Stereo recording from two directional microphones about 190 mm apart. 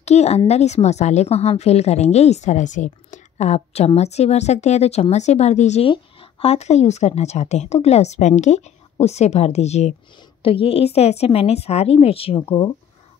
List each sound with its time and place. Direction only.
0.0 s a woman's voice: 35° left (ahead or behind)